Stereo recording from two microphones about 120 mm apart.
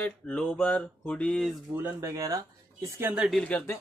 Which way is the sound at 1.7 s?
20° right (ahead or behind).